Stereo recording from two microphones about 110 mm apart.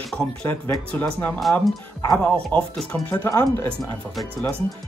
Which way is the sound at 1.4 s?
Centre (ahead or behind).